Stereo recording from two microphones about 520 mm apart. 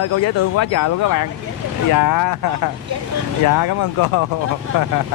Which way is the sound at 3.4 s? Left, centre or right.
Left.